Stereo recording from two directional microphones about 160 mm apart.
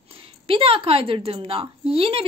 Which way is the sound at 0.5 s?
35° right (ahead or behind).